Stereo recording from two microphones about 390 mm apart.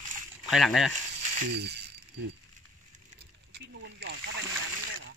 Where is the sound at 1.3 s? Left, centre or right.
Right.